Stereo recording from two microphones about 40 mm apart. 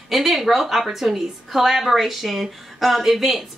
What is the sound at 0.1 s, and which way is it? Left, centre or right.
A woman's voice, centre.